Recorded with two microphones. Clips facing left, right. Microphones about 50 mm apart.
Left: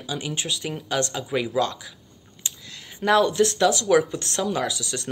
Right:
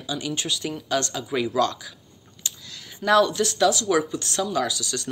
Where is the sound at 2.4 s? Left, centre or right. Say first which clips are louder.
Even; centre.